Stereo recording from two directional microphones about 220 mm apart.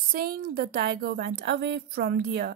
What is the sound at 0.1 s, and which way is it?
A woman's voice, 40° right (ahead or behind).